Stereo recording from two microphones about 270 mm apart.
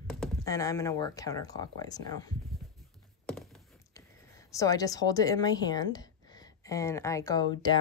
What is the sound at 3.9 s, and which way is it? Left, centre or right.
A woman's voice, centre.